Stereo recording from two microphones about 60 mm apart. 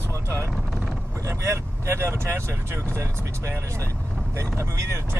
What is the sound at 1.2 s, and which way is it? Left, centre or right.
Speech, right.